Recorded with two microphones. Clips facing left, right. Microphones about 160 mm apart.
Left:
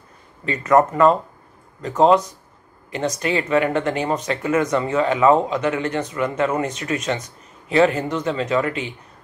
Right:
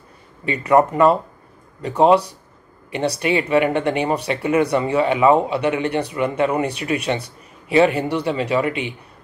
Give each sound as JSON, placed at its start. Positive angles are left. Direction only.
{"t": 0.5, "sound": "speech", "side_deg": -15}
{"t": 3.2, "sound": "speech", "side_deg": -15}